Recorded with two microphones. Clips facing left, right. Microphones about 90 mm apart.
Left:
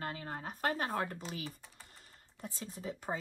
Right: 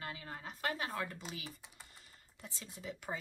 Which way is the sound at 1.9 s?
45° left (ahead or behind).